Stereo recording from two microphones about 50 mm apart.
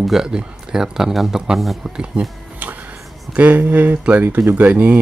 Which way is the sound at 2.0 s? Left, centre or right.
Right.